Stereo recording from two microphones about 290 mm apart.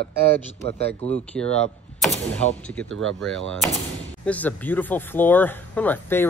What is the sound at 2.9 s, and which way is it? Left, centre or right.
Speech, right.